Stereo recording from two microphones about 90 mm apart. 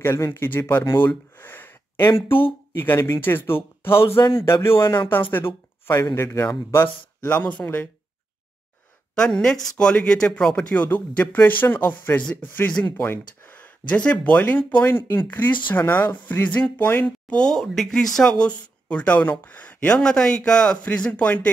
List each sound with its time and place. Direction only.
0.0 s speech: 30° left (ahead or behind)
9.1 s a woman's voice: 10° left (ahead or behind)